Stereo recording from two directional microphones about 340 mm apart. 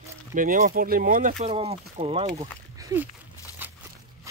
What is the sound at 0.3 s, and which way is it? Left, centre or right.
Speech, right.